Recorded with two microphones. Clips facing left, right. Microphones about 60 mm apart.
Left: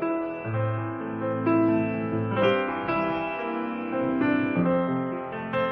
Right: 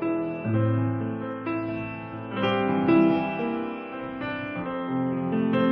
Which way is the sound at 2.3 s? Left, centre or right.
Centre.